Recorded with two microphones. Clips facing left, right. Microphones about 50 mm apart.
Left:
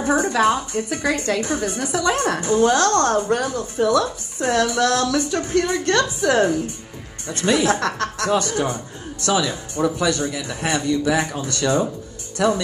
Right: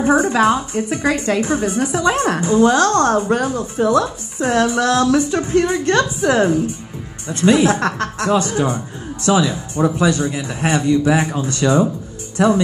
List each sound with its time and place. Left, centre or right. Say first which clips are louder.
0.0 s a woman's voice: right 5 dB; right
0.3 s a woman's voice: right 3 dB; right
7.4 s a woman's voice: right 5 dB; right
11.6 s a woman's voice: right 4 dB; right